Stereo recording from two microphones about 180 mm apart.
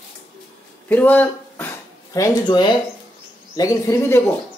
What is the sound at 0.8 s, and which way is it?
Speech, 10° left (ahead or behind).